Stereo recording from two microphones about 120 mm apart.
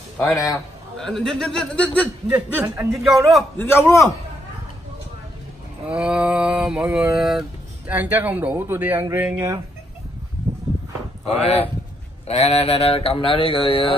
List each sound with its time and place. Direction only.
0.2 s a man's voice: 30° left (ahead or behind)
0.9 s a man's voice: 5° left (ahead or behind)
2.2 s speech: 20° right (ahead or behind)
2.9 s a man's voice: centre (ahead or behind)
3.5 s a man's voice: 20° left (ahead or behind)
5.9 s speech: 10° right (ahead or behind)
7.9 s speech: 15° right (ahead or behind)
11.2 s speech: 60° left (ahead or behind)